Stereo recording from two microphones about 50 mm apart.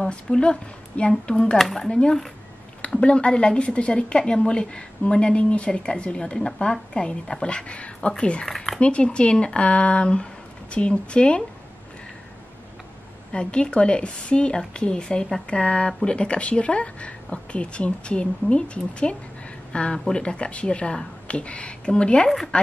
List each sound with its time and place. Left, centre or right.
0.1 s a woman's voice: centre
1.6 s speech: centre
1.9 s a woman's voice: centre
8.5 s speech: centre
8.7 s a woman's voice: left
13.3 s a woman's voice: left